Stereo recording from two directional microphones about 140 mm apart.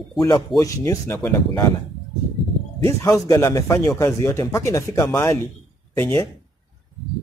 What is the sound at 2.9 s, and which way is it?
Speech, 25° left (ahead or behind).